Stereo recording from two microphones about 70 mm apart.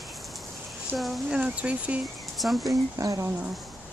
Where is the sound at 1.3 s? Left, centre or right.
Centre.